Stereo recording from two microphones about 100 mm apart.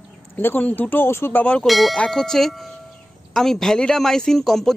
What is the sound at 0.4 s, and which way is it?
Speech, 20° left (ahead or behind).